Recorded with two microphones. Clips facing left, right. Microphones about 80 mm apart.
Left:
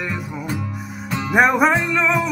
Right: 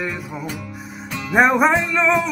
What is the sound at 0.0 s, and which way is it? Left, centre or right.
Music, centre.